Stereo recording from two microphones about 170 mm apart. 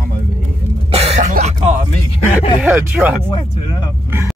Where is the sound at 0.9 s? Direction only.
35° right (ahead or behind).